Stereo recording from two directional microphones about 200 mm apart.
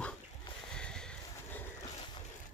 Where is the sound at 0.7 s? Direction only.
5° left (ahead or behind).